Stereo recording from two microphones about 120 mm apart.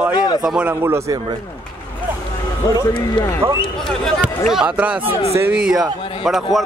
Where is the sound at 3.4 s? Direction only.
25° right (ahead or behind).